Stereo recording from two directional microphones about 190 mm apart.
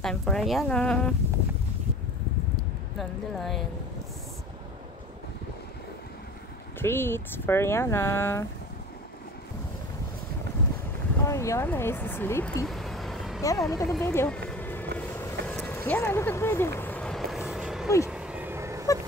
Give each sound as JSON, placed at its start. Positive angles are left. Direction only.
{"t": 0.0, "sound": "speech", "side_deg": 5}
{"t": 3.0, "sound": "speech", "side_deg": 0}
{"t": 6.8, "sound": "speech", "side_deg": 10}
{"t": 11.2, "sound": "speech", "side_deg": 15}
{"t": 12.6, "sound": "vehicle", "side_deg": 0}
{"t": 13.4, "sound": "speech", "side_deg": 15}
{"t": 14.0, "sound": "a sound", "side_deg": 10}
{"t": 15.0, "sound": "vehicle", "side_deg": 10}
{"t": 17.8, "sound": "speech", "side_deg": 15}
{"t": 18.1, "sound": "vehicle", "side_deg": -5}